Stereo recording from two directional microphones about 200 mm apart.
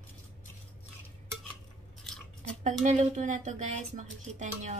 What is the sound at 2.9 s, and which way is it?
Speech, 35° right (ahead or behind).